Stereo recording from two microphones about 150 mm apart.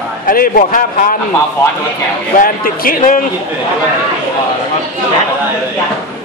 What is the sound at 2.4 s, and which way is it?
Speech, 75° left (ahead or behind).